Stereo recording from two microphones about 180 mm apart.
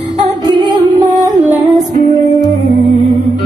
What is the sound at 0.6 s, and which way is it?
Music, 20° right (ahead or behind).